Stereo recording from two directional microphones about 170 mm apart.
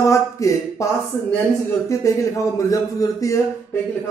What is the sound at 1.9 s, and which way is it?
Speech, 20° left (ahead or behind).